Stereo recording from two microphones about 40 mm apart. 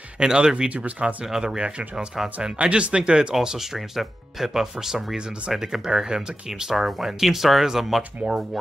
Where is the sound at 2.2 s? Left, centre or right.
Centre.